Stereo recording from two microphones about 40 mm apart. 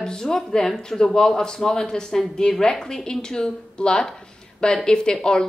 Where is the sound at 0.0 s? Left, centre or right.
Centre.